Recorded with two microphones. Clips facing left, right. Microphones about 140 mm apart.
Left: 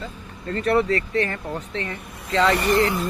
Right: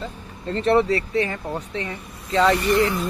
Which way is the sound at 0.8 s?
10° right (ahead or behind).